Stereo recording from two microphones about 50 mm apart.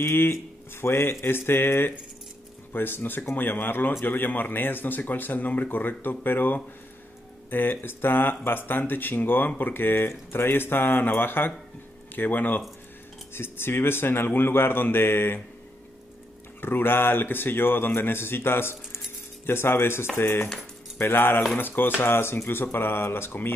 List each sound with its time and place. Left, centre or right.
0.0 s a man's voice: left
13.3 s speech: left
16.6 s a man's voice: left
21.0 s speech: left